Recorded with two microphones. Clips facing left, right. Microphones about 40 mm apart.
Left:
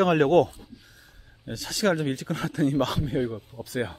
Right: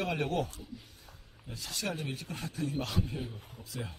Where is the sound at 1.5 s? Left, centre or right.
Left.